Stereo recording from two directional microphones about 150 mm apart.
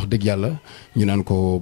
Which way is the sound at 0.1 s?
10° left (ahead or behind).